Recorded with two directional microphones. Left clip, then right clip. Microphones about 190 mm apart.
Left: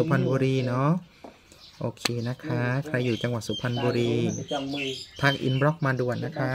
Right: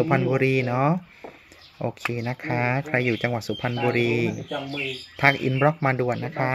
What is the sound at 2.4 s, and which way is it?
Speech, 10° left (ahead or behind).